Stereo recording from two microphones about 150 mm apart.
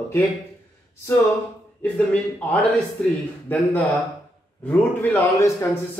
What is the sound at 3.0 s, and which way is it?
A man's voice, 5° left (ahead or behind).